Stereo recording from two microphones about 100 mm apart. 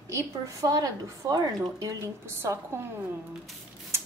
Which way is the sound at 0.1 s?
35° right (ahead or behind).